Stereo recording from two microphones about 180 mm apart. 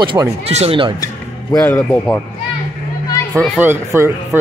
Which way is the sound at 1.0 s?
15° left (ahead or behind).